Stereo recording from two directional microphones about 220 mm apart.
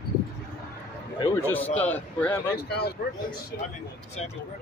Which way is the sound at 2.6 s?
45° left (ahead or behind).